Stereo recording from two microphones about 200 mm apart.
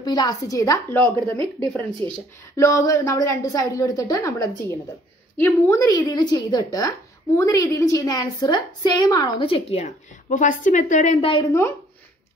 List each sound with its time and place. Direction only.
0.0 s a woman's voice: 20° left (ahead or behind)